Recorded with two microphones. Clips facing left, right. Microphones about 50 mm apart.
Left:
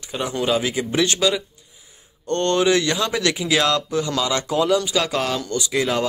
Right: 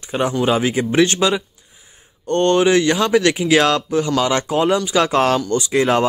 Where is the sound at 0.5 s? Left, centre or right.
Right.